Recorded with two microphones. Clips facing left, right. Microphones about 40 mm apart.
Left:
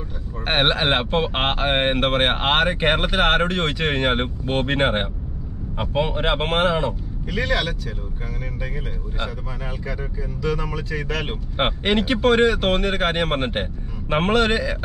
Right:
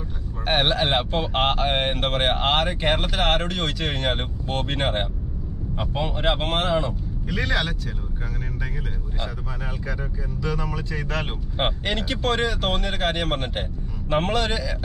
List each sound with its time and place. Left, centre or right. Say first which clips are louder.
0.5 s speech: left 2 dB; left
7.2 s speech: left 2 dB; centre
10.5 s speech: left 2 dB; centre
11.5 s speech: left 5 dB; left